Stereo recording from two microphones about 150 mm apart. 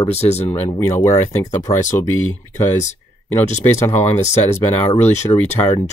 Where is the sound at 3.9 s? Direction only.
45° left (ahead or behind).